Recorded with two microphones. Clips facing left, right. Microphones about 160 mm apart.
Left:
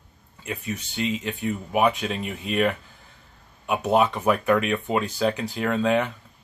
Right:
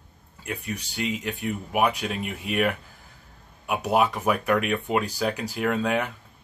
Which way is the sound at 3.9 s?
5° right (ahead or behind).